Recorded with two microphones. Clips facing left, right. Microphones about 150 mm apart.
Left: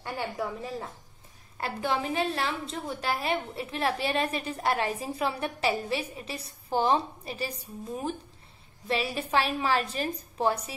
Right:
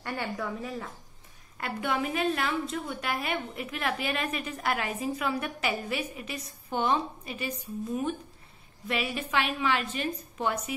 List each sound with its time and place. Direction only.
0.0 s a woman's voice: 30° left (ahead or behind)